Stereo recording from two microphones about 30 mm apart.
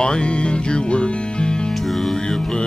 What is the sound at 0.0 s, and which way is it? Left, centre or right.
Music, left.